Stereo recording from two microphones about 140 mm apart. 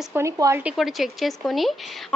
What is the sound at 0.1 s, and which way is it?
Speech, 20° right (ahead or behind).